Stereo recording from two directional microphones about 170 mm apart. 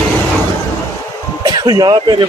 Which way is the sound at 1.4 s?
25° right (ahead or behind).